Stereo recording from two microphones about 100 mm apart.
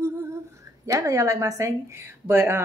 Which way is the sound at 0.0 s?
25° right (ahead or behind).